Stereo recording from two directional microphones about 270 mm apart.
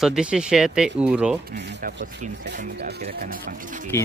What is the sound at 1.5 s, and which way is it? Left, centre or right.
Speech, right.